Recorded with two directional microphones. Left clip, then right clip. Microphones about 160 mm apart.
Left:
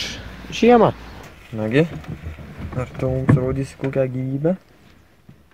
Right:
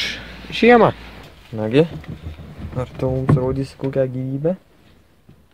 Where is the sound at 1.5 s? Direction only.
15° right (ahead or behind).